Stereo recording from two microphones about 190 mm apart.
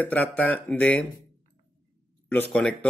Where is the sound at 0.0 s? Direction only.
10° left (ahead or behind).